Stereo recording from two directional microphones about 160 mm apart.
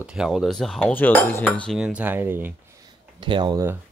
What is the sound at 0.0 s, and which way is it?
Speech, 5° right (ahead or behind).